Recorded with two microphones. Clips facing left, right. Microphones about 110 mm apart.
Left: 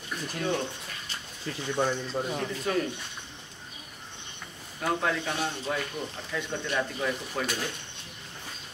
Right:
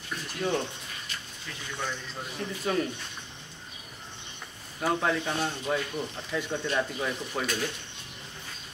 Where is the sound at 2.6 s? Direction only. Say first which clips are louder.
Right 1 dB; 5° right (ahead or behind).